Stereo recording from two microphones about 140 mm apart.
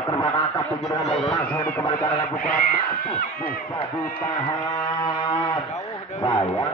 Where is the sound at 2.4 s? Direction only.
90° left.